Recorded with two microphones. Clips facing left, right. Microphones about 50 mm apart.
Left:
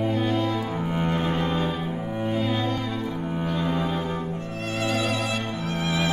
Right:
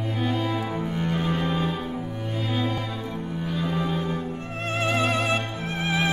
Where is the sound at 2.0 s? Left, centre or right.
Centre.